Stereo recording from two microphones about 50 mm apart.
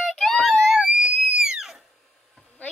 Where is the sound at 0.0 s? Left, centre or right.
Centre.